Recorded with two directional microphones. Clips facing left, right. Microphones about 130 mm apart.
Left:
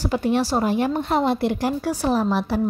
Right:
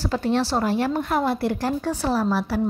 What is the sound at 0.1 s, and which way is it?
A woman's voice, 15° left (ahead or behind).